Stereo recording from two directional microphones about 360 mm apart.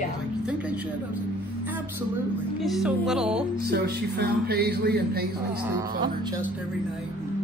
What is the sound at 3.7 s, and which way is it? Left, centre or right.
Speech, right.